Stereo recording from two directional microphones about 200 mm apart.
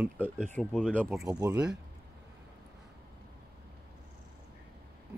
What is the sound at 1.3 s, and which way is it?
Speech, 15° right (ahead or behind).